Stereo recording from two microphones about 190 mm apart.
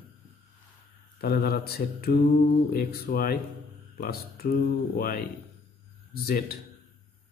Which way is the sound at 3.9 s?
55° left (ahead or behind).